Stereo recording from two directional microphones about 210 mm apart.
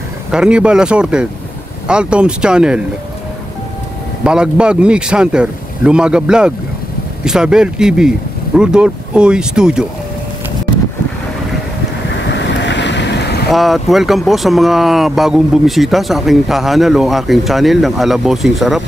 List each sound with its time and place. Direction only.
0.3 s speech: 5° right (ahead or behind)
4.2 s speech: 5° right (ahead or behind)
12.3 s boat: 55° left (ahead or behind)
13.5 s speech: centre (ahead or behind)